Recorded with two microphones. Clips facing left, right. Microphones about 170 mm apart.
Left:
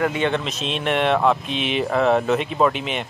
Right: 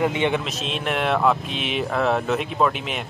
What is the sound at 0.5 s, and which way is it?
Speech, centre (ahead or behind).